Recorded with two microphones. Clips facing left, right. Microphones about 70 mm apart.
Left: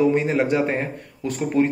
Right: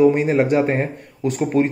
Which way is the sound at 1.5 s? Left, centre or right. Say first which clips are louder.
Right 1 dB; right.